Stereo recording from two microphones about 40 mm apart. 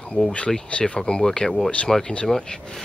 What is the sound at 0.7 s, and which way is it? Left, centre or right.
Speech, left.